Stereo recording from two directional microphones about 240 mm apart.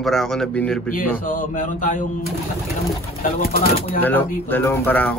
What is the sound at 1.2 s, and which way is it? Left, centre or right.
Speech, left.